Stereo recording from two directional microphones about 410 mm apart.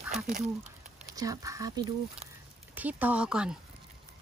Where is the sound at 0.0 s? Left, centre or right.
Centre.